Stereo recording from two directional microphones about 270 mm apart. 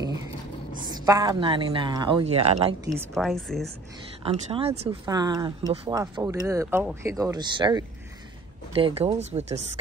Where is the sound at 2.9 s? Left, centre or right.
Centre.